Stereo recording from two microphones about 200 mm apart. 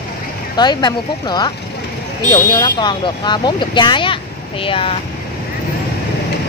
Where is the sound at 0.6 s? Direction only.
20° left (ahead or behind).